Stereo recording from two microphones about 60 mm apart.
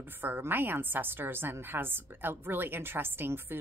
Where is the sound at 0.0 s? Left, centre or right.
Right.